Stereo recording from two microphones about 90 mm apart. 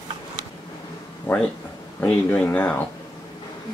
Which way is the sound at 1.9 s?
20° left (ahead or behind).